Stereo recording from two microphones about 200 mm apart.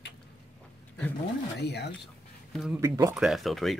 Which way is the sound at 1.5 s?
55° left (ahead or behind).